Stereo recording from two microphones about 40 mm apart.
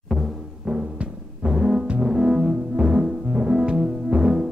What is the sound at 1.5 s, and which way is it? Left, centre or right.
Music, centre.